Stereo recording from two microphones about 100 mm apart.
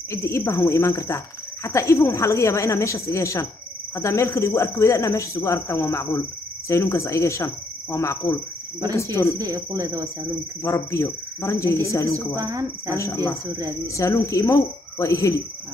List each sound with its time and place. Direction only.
0.1 s speech: 30° left (ahead or behind)
9.4 s speech: 35° right (ahead or behind)
10.6 s speech: 30° left (ahead or behind)
12.4 s speech: 35° right (ahead or behind)
12.9 s speech: 30° left (ahead or behind)